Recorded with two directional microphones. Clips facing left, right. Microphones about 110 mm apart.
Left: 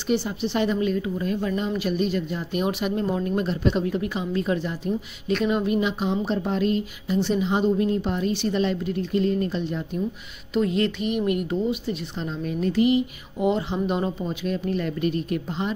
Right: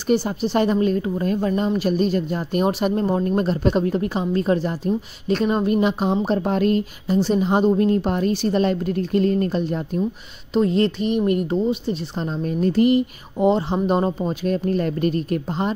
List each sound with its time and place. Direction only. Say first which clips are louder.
0.1 s a woman's voice: right 5 dB; 45° right (ahead or behind)